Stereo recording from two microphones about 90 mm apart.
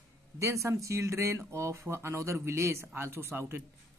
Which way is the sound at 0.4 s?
35° right (ahead or behind).